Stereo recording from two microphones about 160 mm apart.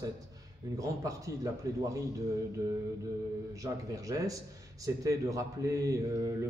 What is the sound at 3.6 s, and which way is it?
Speech, 20° right (ahead or behind).